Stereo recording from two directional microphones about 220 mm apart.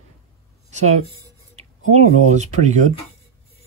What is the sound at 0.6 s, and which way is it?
Speech, 30° right (ahead or behind).